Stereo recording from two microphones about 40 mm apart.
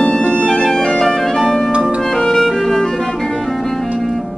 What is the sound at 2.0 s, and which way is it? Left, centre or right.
Clarinet, centre.